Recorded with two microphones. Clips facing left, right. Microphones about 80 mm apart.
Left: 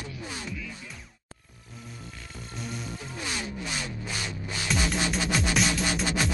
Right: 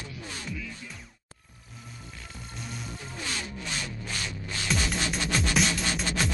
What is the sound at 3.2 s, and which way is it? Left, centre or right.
Music, centre.